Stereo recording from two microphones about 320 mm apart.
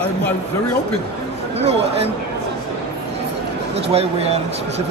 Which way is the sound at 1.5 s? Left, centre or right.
Centre.